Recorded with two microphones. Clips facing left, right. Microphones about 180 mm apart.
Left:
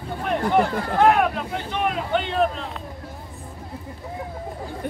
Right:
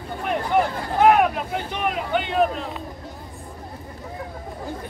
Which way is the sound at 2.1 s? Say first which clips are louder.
Right 2 dB; 5° right (ahead or behind).